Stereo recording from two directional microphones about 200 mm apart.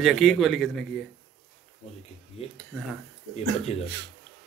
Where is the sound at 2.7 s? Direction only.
5° left (ahead or behind).